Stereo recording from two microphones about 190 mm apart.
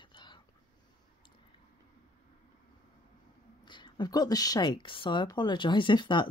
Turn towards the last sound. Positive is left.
turn(degrees=25)  # may be behind; listen again after turning